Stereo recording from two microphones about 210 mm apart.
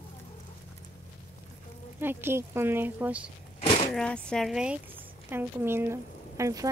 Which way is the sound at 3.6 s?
30° left (ahead or behind).